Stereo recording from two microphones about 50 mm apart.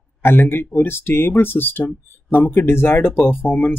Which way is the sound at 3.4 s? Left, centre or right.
Left.